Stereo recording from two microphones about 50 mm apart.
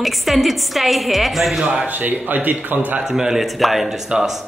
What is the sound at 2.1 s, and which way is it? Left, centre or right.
Speech, right.